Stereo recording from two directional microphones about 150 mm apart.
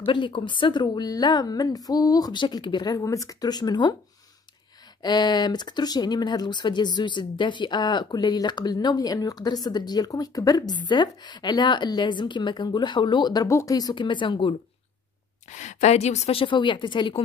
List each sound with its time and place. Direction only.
0.0 s speech: 35° left (ahead or behind)
5.0 s speech: 30° left (ahead or behind)
15.5 s a woman's voice: 50° left (ahead or behind); by 17.2 s 35° left (ahead or behind)